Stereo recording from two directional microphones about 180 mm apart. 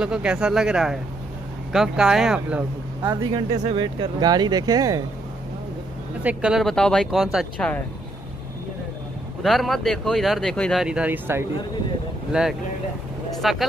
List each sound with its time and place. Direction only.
0.0 s speech: 5° right (ahead or behind)
3.0 s speech: 20° right (ahead or behind)
6.2 s speech: 5° right (ahead or behind)
9.4 s speech: centre (ahead or behind)